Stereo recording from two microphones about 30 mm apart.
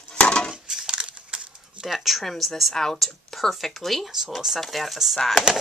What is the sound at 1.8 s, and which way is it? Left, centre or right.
Speech, centre.